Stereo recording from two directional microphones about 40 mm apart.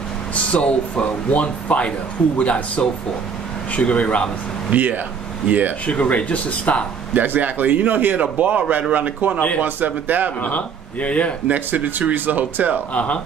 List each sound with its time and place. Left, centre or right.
0.6 s speech: left
4.6 s speech: right
5.9 s speech: left
7.2 s a man's voice: right
10.4 s speech: left
11.4 s speech: right
12.9 s speech: left